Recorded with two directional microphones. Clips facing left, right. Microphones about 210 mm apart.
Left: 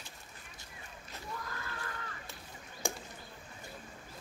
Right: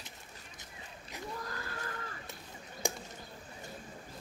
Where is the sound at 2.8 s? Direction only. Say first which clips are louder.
Right 1 dB; 15° right (ahead or behind).